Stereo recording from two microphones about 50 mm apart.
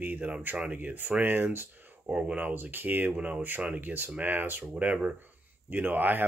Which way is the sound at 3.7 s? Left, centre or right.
Right.